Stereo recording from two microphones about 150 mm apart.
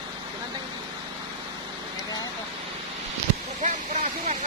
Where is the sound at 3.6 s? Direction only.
55° right (ahead or behind).